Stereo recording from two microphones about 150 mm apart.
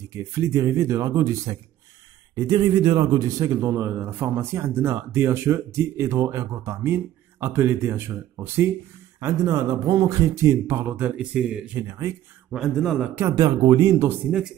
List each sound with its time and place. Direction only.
0.1 s a man's voice: 20° right (ahead or behind)
12.4 s speech: centre (ahead or behind)
13.1 s a man's voice: 15° right (ahead or behind)
13.4 s a man's voice: 30° right (ahead or behind)